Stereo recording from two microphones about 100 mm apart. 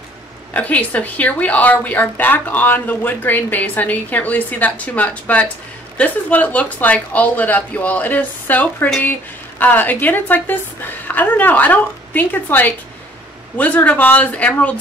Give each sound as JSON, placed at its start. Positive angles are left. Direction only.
{"t": 0.5, "sound": "a woman's voice", "side_deg": 15}